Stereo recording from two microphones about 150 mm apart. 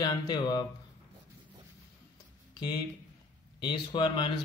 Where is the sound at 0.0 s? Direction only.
25° left (ahead or behind).